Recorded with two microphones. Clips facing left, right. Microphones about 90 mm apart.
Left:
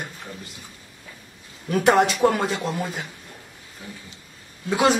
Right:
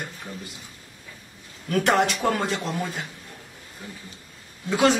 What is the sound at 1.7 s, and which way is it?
Speech, 15° left (ahead or behind).